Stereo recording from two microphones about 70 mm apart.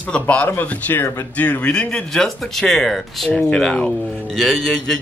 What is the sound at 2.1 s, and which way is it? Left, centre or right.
A man's voice, centre.